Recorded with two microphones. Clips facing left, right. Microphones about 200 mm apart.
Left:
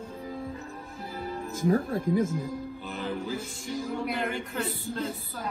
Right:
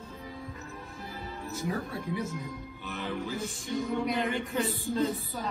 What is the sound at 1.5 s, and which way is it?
Speech, 50° left (ahead or behind).